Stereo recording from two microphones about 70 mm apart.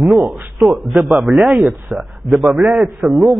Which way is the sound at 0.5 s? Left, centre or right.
Centre.